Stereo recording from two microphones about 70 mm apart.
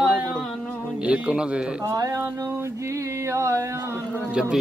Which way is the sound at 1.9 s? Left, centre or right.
Right.